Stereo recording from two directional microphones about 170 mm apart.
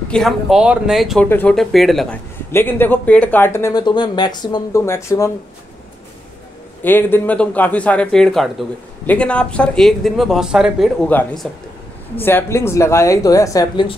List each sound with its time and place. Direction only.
0.1 s speech: centre (ahead or behind)
2.5 s speech: 10° left (ahead or behind)
6.8 s speech: 10° left (ahead or behind); by 10.9 s 5° right (ahead or behind)
11.1 s speech: 10° left (ahead or behind)